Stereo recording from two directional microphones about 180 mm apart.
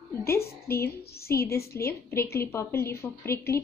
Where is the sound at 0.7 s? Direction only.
60° left (ahead or behind).